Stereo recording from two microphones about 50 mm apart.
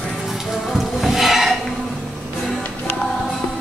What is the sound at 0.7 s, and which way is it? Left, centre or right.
Music, centre.